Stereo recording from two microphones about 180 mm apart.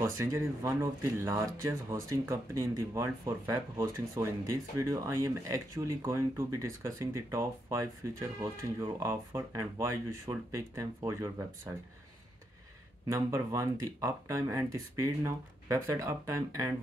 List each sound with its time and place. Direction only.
0.0 s speech: 15° right (ahead or behind)
13.1 s speech: 15° right (ahead or behind)